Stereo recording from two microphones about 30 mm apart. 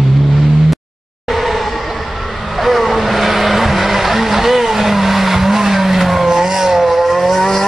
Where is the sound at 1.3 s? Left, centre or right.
Centre.